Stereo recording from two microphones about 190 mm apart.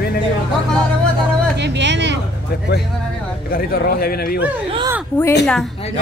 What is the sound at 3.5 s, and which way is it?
Speech, 50° left (ahead or behind).